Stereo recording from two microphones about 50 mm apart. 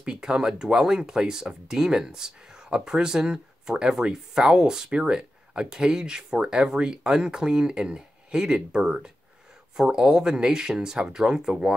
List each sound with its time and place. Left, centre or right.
0.0 s speech: centre